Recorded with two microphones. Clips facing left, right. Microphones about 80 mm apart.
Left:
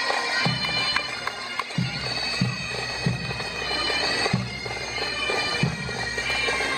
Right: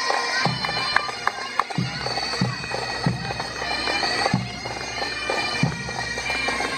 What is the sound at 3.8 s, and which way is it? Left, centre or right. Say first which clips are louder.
Bagpipes: right 3 dB; right.